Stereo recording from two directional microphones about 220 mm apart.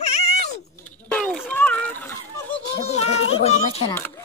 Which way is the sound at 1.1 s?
5° left (ahead or behind).